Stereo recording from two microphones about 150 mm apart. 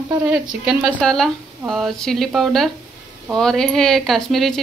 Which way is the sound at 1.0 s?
5° left (ahead or behind).